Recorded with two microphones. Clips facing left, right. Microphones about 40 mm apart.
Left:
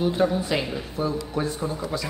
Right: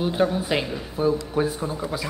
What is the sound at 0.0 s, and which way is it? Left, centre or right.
A man's voice, centre.